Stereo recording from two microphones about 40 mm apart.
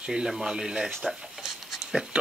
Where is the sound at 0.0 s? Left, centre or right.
Centre.